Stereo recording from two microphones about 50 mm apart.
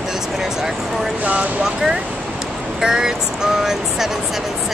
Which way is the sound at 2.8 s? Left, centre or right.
Centre.